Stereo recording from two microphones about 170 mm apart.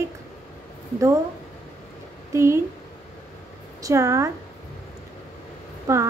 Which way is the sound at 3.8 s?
20° right (ahead or behind).